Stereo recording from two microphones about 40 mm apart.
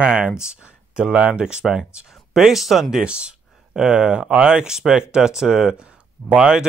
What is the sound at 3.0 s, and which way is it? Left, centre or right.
Speech, right.